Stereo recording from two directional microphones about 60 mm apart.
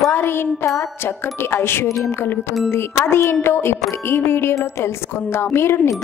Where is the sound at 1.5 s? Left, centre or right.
Left.